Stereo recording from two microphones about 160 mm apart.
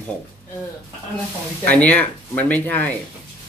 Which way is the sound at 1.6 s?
10° left (ahead or behind).